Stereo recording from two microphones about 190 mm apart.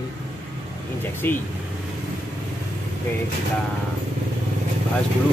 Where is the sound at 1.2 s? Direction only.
10° left (ahead or behind).